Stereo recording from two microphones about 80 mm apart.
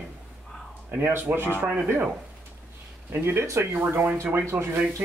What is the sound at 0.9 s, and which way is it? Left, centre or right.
Speech, right.